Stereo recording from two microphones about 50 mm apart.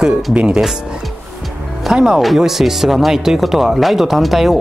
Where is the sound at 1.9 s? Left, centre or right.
Centre.